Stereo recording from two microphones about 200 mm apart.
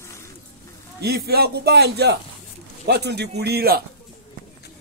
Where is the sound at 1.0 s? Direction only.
50° right (ahead or behind).